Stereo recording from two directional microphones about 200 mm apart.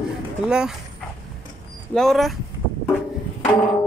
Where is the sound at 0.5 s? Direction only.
5° right (ahead or behind).